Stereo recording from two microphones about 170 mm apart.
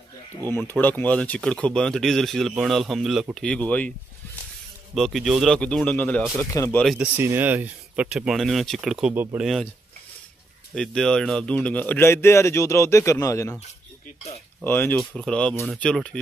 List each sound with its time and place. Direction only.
0.5 s speech: 10° left (ahead or behind)
4.9 s speech: centre (ahead or behind); by 6.8 s 15° left (ahead or behind)
6.8 s speech: centre (ahead or behind)
7.2 s speech: 10° right (ahead or behind)
10.7 s speech: 5° left (ahead or behind); by 13.6 s 20° left (ahead or behind)
14.6 s speech: 10° left (ahead or behind)